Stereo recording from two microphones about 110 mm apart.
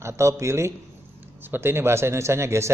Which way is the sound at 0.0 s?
25° right (ahead or behind).